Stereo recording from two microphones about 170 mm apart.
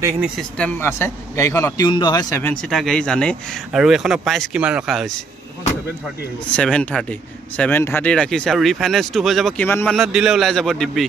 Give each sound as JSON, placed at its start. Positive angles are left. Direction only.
{"t": 0.2, "sound": "a man's voice", "side_deg": 5}
{"t": 2.4, "sound": "speech", "side_deg": 5}
{"t": 6.5, "sound": "speech", "side_deg": 5}
{"t": 9.7, "sound": "speech", "side_deg": 10}
{"t": 9.9, "sound": "speech", "side_deg": -5}